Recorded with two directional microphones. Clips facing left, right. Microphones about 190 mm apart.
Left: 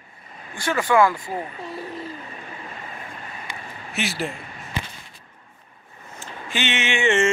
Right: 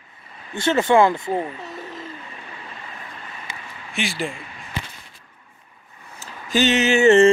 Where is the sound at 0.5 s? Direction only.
25° right (ahead or behind).